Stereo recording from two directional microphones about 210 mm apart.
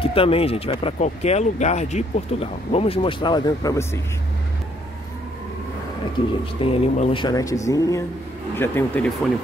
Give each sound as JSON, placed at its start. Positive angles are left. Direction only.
{"t": 0.0, "sound": "speech", "side_deg": 25}
{"t": 6.6, "sound": "speech", "side_deg": 25}